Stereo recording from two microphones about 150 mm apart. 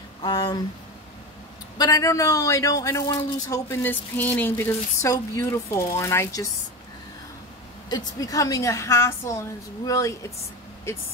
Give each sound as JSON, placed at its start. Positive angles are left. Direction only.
{"t": 0.2, "sound": "a man's voice", "side_deg": 25}
{"t": 1.8, "sound": "a man's voice", "side_deg": 25}
{"t": 7.9, "sound": "a man's voice", "side_deg": 25}